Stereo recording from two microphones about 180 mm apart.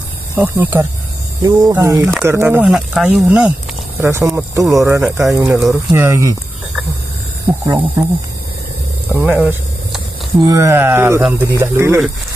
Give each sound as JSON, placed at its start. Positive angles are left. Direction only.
{"t": 0.4, "sound": "speech", "side_deg": -10}
{"t": 4.0, "sound": "speech", "side_deg": -15}
{"t": 9.1, "sound": "a sound", "side_deg": -10}
{"t": 10.4, "sound": "speech", "side_deg": -20}